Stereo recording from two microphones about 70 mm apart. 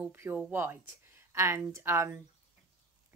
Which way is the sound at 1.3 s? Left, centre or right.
Right.